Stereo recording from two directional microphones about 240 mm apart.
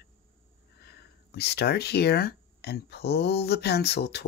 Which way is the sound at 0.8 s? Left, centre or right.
Left.